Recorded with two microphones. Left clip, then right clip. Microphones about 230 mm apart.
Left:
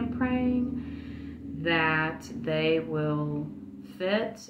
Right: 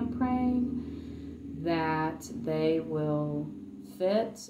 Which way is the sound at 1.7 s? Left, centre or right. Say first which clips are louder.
Left 4 dB; left.